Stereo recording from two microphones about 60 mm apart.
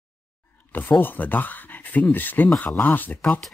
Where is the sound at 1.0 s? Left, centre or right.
Left.